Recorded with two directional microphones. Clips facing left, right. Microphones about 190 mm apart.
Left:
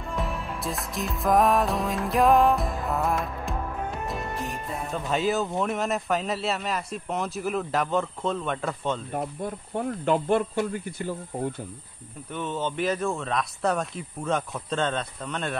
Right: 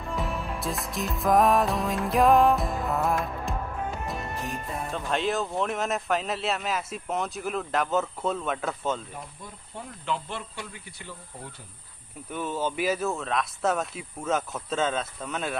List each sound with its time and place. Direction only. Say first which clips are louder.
0.0 s music: even; centre (ahead or behind)
4.7 s speech: left 2 dB; centre (ahead or behind)
9.1 s speech: left 12 dB; 55° left (ahead or behind)
12.3 s speech: even; 10° right (ahead or behind)